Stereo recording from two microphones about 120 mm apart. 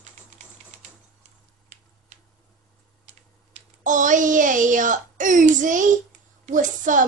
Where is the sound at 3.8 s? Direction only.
90° right.